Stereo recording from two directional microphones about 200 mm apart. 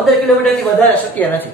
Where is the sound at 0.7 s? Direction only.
10° left (ahead or behind).